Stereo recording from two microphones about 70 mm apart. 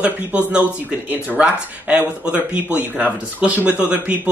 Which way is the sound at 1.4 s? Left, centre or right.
Centre.